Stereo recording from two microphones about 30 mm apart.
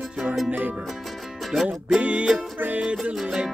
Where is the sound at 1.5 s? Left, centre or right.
Centre.